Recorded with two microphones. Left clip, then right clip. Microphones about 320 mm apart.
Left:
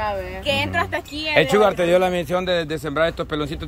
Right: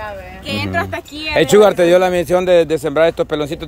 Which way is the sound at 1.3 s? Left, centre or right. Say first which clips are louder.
Right 6 dB; right.